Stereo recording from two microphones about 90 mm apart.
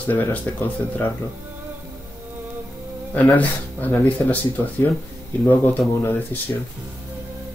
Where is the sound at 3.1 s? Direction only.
15° left (ahead or behind).